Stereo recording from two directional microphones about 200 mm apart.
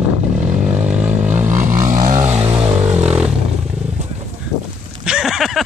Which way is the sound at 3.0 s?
5° right (ahead or behind).